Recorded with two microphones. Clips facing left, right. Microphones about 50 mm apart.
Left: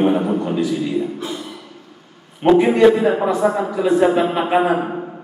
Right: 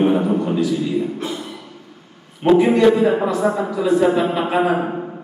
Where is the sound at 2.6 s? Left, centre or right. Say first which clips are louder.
Left 1 dB; centre.